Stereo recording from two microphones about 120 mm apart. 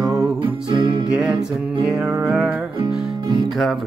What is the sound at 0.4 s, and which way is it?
Music, 45° right (ahead or behind).